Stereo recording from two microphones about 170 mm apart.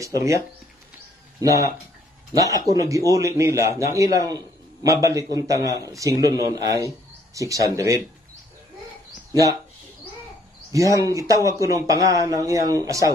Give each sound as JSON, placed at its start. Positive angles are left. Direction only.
{"t": 0.0, "sound": "speech", "side_deg": -20}
{"t": 2.5, "sound": "speech", "side_deg": -20}
{"t": 9.3, "sound": "speech", "side_deg": -20}
{"t": 10.7, "sound": "speech", "side_deg": -20}